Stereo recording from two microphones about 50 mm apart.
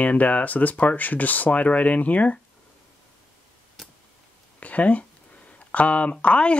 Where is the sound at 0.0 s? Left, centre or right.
Left.